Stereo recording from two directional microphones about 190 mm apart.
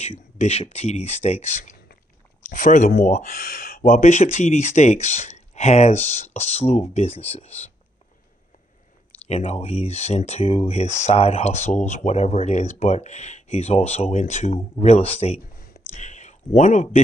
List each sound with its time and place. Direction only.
0.4 s speech: 35° left (ahead or behind)
9.3 s speech: 35° left (ahead or behind)